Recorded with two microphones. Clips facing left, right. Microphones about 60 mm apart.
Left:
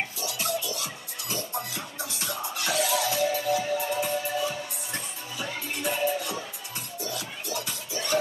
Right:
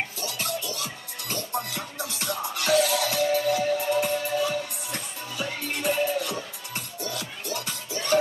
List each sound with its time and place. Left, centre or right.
0.2 s music: right